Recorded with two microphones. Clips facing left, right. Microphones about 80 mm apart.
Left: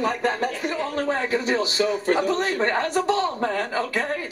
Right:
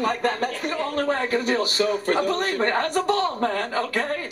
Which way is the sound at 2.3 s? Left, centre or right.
Right.